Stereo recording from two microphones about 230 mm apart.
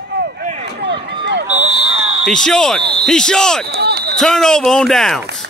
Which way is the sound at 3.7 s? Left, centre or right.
Right.